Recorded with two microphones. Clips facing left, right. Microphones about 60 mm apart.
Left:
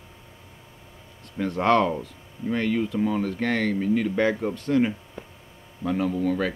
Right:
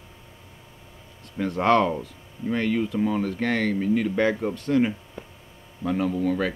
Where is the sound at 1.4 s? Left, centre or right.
Centre.